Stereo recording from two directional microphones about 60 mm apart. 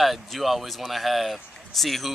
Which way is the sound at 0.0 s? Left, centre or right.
Centre.